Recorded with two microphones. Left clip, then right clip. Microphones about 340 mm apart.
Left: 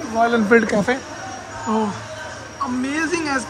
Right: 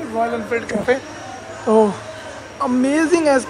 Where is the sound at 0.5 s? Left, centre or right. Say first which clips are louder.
Left 8 dB; left.